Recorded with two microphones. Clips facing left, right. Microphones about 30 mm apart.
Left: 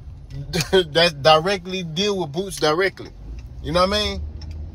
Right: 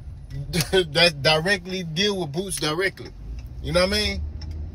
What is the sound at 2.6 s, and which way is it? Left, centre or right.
Speech, left.